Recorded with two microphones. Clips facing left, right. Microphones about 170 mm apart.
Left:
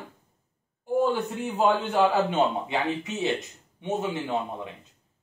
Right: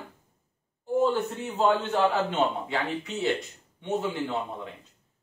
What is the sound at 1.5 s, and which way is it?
A man's voice, 10° left (ahead or behind).